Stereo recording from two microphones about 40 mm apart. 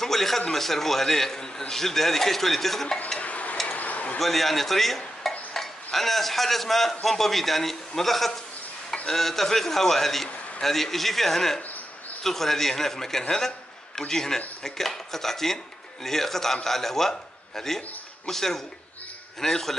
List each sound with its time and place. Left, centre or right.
0.0 s speech: centre
3.2 s stir: left
3.6 s a sound: left
4.2 s a man's voice: centre